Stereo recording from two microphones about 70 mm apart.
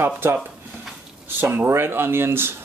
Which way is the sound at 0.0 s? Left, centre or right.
Right.